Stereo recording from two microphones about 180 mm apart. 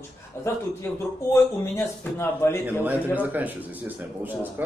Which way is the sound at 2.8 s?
10° right (ahead or behind).